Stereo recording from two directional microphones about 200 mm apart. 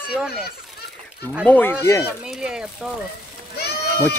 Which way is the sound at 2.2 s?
5° right (ahead or behind).